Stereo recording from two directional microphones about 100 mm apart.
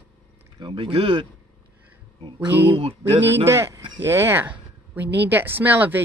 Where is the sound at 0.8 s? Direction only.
70° right (ahead or behind).